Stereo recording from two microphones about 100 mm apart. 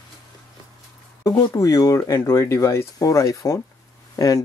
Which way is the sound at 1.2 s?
35° left (ahead or behind).